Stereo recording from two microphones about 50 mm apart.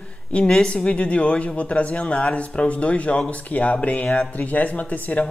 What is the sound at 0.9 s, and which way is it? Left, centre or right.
Speech, left.